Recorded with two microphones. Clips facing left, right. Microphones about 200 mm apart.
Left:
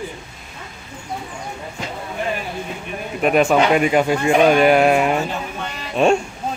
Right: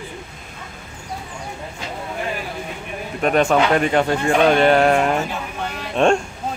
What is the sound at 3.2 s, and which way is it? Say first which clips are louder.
Speech: left 1 dB; 5° left (ahead or behind).